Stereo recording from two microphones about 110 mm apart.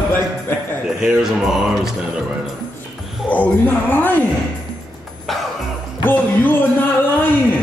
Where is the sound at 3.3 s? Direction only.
15° left (ahead or behind).